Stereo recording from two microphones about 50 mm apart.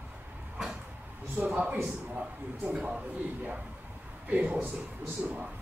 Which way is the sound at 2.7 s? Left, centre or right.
Right.